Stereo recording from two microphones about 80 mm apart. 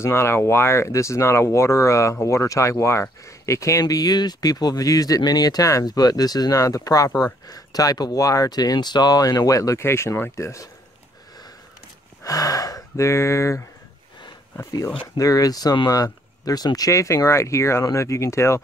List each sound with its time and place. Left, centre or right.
0.0 s speech: left
3.8 s speech: left
12.2 s speech: left
15.1 s speech: left